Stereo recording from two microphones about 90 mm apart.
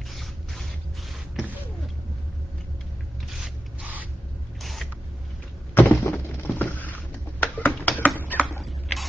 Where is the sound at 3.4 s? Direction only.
15° right (ahead or behind).